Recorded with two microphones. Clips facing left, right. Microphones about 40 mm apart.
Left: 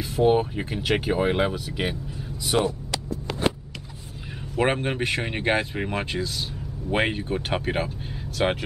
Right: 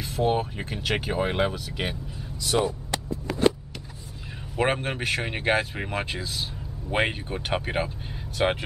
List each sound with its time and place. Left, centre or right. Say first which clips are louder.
0.0 s speech: left 4 dB; centre
2.5 s speech: left 1 dB; left
4.6 s speech: left 2 dB; centre